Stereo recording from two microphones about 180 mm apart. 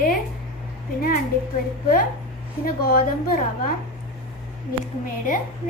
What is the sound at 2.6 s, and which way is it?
Speech, 55° left (ahead or behind).